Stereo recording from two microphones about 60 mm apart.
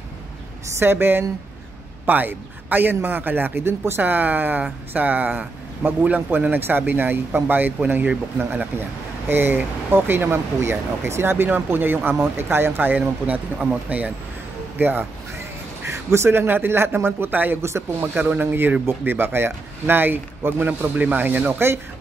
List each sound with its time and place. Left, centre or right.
0.7 s speech: right
4.0 s speech: right
9.3 s speech: right
15.3 s speech: right
17.6 s speech: right
18.1 s speech: right